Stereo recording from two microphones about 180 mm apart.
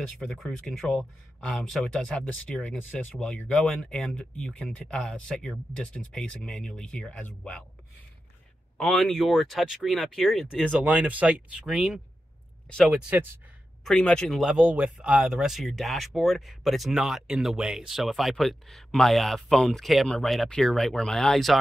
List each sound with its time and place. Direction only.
0.2 s speech: centre (ahead or behind)
8.7 s speech: 5° left (ahead or behind)
13.8 s speech: 5° left (ahead or behind)